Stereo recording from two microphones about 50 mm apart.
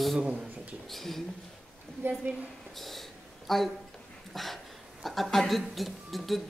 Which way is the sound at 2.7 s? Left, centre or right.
Centre.